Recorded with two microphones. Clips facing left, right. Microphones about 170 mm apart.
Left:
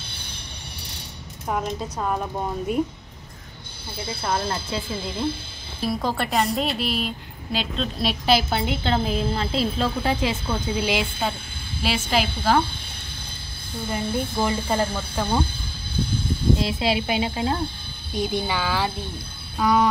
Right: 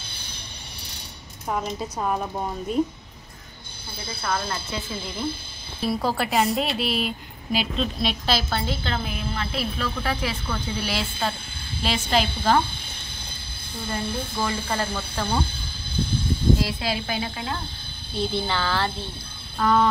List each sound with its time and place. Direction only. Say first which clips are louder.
1.5 s a woman's voice: left 1 dB; 5° right (ahead or behind)
4.2 s a woman's voice: left 2 dB; 25° left (ahead or behind)
5.9 s a woman's voice: right 1 dB; 5° right (ahead or behind)
8.3 s a woman's voice: left 7 dB; 15° left (ahead or behind)
13.8 s speech: left 3 dB; 15° left (ahead or behind)
16.5 s a woman's voice: left 3 dB; 25° left (ahead or behind)